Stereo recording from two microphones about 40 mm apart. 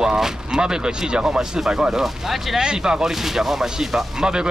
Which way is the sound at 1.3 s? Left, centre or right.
Centre.